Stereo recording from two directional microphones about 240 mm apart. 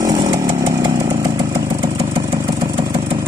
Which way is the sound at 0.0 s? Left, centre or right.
Centre.